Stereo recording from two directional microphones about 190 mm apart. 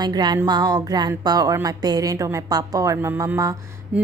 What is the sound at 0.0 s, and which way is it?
A woman's voice, 20° right (ahead or behind).